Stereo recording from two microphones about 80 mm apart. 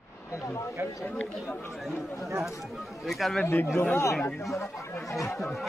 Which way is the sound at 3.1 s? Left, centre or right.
Centre.